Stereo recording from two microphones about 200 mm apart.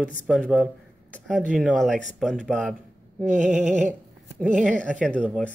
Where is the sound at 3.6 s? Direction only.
40° right (ahead or behind).